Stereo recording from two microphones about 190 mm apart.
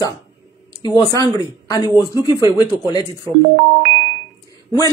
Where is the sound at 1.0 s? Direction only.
20° left (ahead or behind).